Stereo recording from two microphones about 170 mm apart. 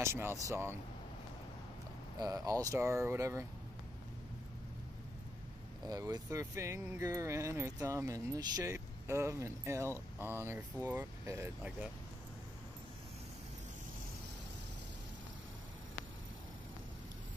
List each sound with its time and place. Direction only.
0.0 s speech: 15° right (ahead or behind)
2.1 s speech: 20° right (ahead or behind)
5.9 s speech: 20° right (ahead or behind)